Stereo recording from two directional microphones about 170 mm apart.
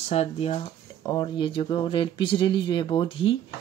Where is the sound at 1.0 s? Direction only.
25° left (ahead or behind).